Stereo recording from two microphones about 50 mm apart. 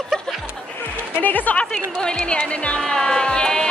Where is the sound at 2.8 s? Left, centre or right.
Centre.